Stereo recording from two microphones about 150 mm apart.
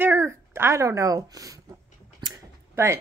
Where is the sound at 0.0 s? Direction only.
15° right (ahead or behind).